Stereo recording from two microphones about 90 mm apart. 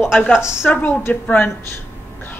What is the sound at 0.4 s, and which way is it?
Speech, 10° right (ahead or behind).